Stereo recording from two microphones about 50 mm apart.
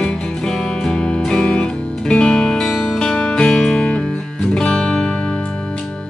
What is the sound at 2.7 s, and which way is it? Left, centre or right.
Music, centre.